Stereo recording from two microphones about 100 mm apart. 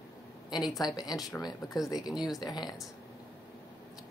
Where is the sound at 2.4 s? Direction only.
40° left (ahead or behind).